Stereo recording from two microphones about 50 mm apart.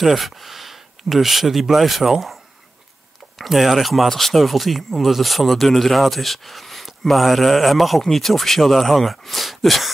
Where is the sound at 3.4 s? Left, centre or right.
Centre.